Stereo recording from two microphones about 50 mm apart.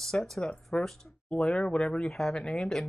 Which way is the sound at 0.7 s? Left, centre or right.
Left.